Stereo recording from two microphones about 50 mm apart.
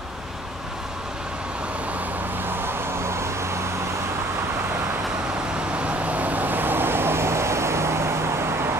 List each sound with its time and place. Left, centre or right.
2.6 s vehicle: right
5.8 s vehicle: right